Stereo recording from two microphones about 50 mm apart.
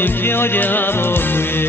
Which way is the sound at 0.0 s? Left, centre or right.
Left.